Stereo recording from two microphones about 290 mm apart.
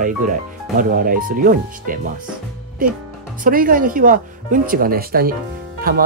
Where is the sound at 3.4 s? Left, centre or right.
Right.